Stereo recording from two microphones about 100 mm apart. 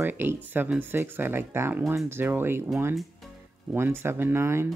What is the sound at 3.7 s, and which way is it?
Speech, 25° right (ahead or behind).